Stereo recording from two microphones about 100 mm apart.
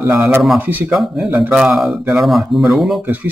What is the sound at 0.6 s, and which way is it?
Speech, 20° right (ahead or behind).